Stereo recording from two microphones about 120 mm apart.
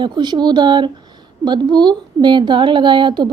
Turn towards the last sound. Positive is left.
turn(degrees=-40)  # may be behind; listen again after turning